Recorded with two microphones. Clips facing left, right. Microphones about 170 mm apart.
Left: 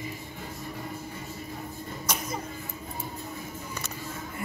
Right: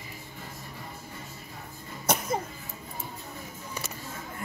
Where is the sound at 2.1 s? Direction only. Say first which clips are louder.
Right 6 dB; 60° right (ahead or behind).